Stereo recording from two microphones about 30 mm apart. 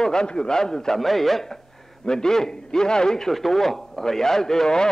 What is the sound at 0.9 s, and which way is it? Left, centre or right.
A man's voice, centre.